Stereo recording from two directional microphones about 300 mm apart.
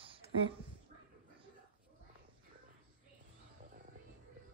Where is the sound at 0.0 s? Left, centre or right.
Centre.